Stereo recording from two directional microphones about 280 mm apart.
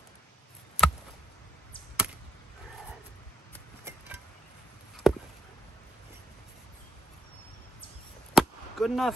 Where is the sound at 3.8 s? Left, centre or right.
Centre.